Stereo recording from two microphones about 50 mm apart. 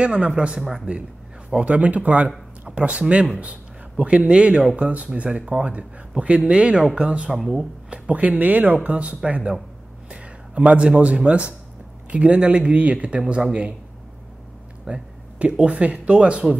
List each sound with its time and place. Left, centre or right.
0.0 s speech: right
0.6 s speech: centre
1.5 s speech: right
7.3 s speech: centre
7.9 s speech: right
10.0 s a sound: right
11.2 s speech: right
14.9 s speech: right